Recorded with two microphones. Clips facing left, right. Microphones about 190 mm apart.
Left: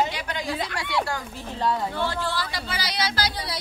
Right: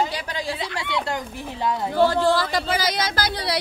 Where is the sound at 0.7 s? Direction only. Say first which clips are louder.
Right 1 dB; 15° right (ahead or behind).